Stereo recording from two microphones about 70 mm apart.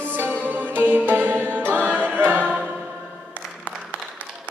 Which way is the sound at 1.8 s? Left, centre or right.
Right.